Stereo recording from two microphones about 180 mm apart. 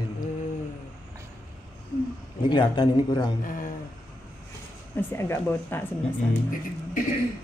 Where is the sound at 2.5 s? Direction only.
25° left (ahead or behind).